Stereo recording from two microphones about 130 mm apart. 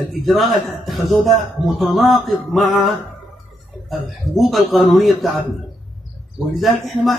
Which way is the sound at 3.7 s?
Centre (ahead or behind).